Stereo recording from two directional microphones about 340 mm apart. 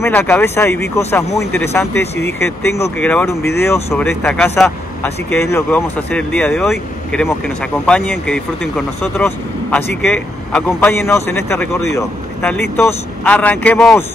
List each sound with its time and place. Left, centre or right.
0.0 s speech: centre